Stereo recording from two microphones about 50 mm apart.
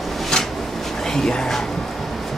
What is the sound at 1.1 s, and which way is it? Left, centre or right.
Music, centre.